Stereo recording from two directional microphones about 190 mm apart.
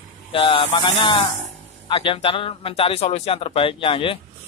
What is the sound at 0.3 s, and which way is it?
Speech, 30° left (ahead or behind).